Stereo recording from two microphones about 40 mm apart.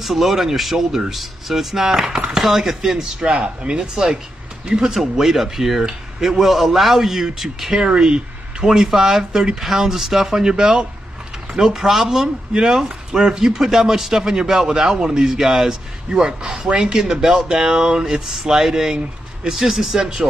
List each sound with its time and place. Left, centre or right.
0.0 s speech: centre
3.3 s speech: right; by 7.7 s centre
7.7 s speech: centre
8.7 s speech: centre
16.5 s speech: right
16.8 s speech: centre